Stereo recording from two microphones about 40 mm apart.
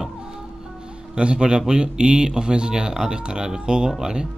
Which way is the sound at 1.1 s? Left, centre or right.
Right.